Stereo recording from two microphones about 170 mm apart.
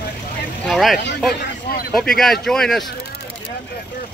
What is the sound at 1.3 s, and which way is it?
Speech, 65° left (ahead or behind).